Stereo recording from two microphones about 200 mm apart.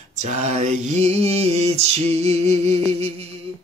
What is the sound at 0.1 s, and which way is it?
Mantra, 35° right (ahead or behind).